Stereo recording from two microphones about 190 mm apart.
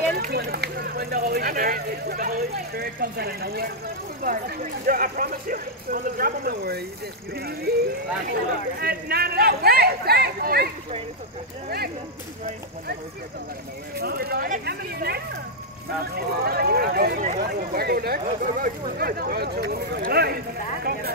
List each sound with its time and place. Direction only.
0.2 s speech: 55° right (ahead or behind)
13.9 s speech: 55° right (ahead or behind)
20.8 s vehicle: 55° right (ahead or behind)